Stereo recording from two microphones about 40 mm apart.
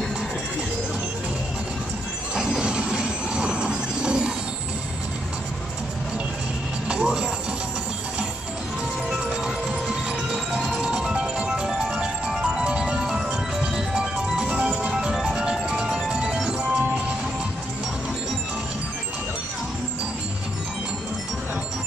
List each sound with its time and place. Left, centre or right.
2.3 s train: centre
6.9 s music: right
9.2 s music: right